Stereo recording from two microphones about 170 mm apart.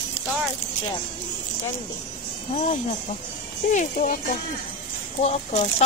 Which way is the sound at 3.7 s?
55° left (ahead or behind).